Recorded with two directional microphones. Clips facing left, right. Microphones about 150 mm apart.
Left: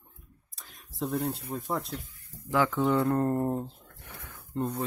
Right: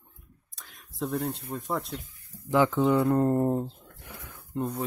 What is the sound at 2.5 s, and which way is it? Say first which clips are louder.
Speech: right 3 dB; 20° right (ahead or behind).